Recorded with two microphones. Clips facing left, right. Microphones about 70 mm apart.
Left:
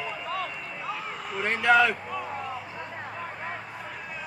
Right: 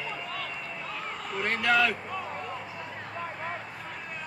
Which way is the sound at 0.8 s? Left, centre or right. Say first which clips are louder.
Left 4 dB; centre.